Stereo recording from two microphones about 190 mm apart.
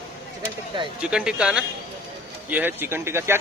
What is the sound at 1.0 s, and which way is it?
Speech, 5° right (ahead or behind).